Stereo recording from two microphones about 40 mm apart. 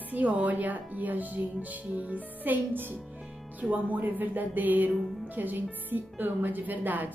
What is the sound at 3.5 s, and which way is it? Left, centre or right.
Speech, right.